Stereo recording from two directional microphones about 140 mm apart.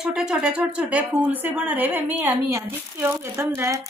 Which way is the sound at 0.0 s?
5° right (ahead or behind).